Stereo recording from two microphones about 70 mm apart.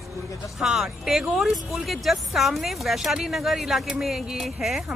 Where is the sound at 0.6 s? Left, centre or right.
Centre.